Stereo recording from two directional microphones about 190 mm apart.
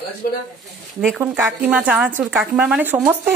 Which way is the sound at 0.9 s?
5° right (ahead or behind).